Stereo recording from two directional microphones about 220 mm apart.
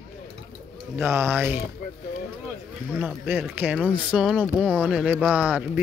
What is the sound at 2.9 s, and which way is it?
Speech, 10° right (ahead or behind).